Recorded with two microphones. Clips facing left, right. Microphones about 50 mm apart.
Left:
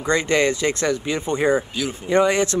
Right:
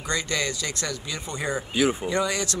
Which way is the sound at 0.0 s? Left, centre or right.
Left.